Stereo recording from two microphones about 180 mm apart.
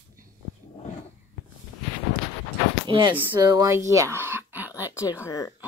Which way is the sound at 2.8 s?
25° right (ahead or behind).